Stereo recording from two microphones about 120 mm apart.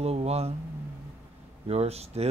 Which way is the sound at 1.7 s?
60° right (ahead or behind).